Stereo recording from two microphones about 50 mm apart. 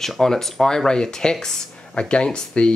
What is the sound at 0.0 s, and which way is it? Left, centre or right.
Speech, centre.